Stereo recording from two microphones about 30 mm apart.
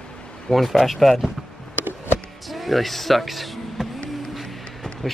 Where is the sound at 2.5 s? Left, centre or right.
Centre.